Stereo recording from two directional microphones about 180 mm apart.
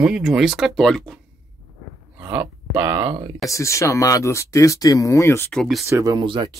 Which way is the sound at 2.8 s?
25° right (ahead or behind).